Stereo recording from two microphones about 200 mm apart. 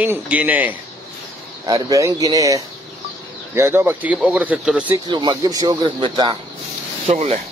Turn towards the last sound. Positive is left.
turn(degrees=-30)  # may be behind; listen again after turning